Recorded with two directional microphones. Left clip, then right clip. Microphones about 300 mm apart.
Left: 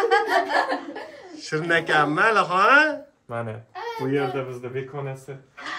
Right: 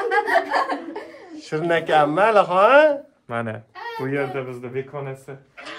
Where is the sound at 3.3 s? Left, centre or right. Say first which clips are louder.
Right 4 dB; right.